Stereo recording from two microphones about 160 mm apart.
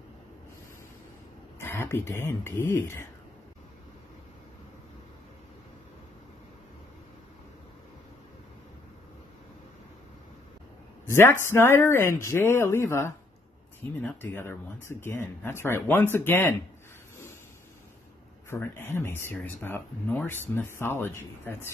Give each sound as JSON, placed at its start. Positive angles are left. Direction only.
{"t": 1.6, "sound": "speech", "side_deg": 15}
{"t": 11.1, "sound": "speech", "side_deg": 15}
{"t": 18.5, "sound": "speech", "side_deg": 15}